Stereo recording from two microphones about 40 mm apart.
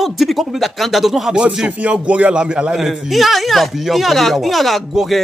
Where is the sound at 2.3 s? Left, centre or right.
Right.